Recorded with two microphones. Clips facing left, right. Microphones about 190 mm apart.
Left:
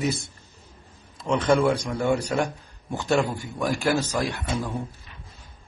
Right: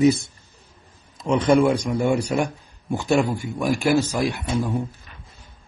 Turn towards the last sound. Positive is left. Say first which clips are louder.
# right 5 dB
turn(degrees=-10)  # may be behind; listen again after turning